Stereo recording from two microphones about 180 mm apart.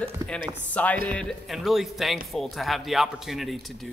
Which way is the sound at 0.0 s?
5° left (ahead or behind).